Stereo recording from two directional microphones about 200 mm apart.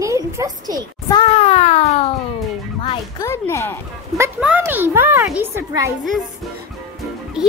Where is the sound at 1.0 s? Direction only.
25° left (ahead or behind).